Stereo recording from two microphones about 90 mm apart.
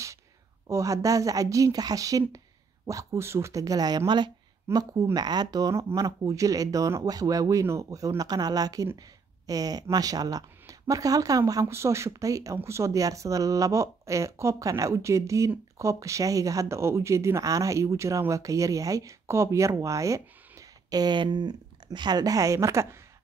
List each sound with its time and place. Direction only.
0.7 s speech: 35° right (ahead or behind)
4.7 s speech: 30° right (ahead or behind)
5.1 s speech: 50° right (ahead or behind)
8.2 s speech: 45° right (ahead or behind)
11.6 s speech: 30° right (ahead or behind)